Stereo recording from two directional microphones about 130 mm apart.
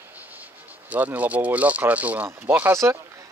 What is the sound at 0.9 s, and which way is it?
Speech, 10° right (ahead or behind).